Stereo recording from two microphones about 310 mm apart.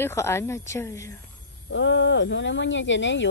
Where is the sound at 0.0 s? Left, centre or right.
Centre.